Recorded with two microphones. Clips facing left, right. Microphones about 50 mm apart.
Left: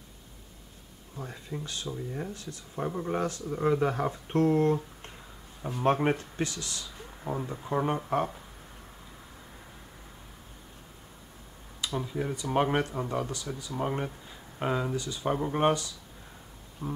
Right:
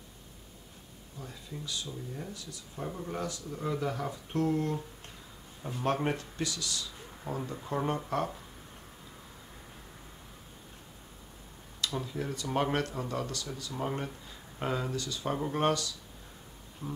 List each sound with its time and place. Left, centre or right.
1.1 s speech: left
2.9 s speech: left
3.2 s speech: left
5.6 s speech: left
7.2 s speech: centre
11.8 s speech: centre